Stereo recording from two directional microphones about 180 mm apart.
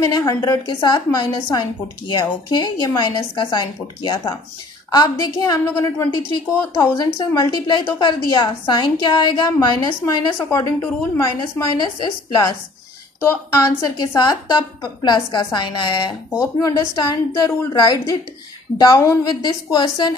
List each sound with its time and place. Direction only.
0.0 s a woman's voice: 20° left (ahead or behind)